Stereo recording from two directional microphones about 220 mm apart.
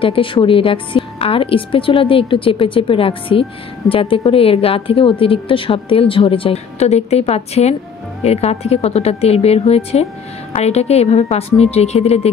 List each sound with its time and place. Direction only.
0.0 s a woman's voice: 25° left (ahead or behind)